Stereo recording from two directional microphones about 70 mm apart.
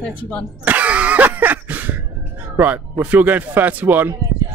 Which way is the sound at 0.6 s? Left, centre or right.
Right.